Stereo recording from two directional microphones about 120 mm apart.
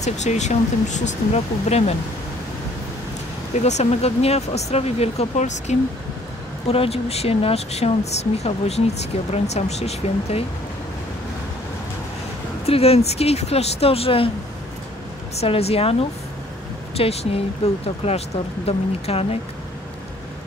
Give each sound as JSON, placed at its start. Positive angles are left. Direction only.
{"t": 0.0, "sound": "speech", "side_deg": 75}
{"t": 3.6, "sound": "speech", "side_deg": 65}
{"t": 6.7, "sound": "speech", "side_deg": 55}
{"t": 12.6, "sound": "speech", "side_deg": 55}
{"t": 15.3, "sound": "speech", "side_deg": 55}